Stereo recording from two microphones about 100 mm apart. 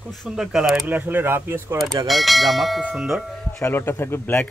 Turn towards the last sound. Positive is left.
turn(degrees=20)  # may be behind; listen again after turning